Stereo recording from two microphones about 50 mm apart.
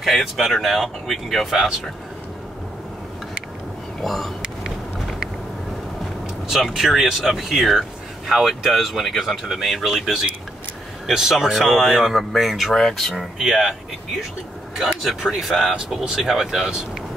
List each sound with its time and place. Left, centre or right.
0.0 s speech: centre
4.0 s speech: centre
6.7 s speech: centre
13.4 s speech: centre
15.7 s speech: centre
16.0 s speech: centre